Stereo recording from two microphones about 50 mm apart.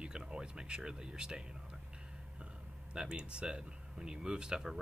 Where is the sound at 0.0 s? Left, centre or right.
Centre.